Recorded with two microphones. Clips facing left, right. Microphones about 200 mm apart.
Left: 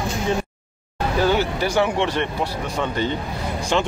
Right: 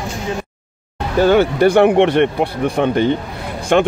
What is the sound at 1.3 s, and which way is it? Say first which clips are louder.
Speech: right 9 dB; 60° right (ahead or behind).